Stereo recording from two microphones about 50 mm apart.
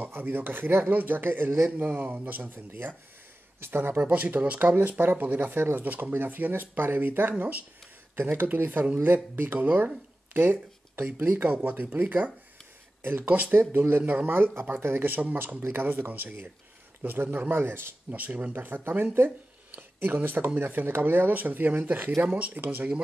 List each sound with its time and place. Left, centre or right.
0.0 s speech: right
4.0 s speech: right
4.6 s speech: right
9.6 s speech: right
10.3 s speech: right
13.5 s speech: right
18.1 s speech: right